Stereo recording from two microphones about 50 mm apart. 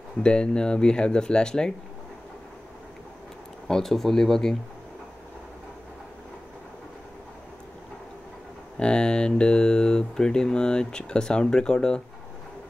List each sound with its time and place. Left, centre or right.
0.2 s speech: centre
3.6 s speech: centre
8.7 s speech: centre